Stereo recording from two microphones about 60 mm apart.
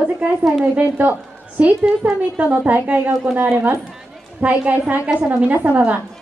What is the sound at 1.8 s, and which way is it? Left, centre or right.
A woman's voice, centre.